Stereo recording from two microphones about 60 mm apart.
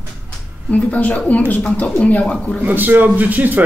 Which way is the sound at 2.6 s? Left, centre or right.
Right.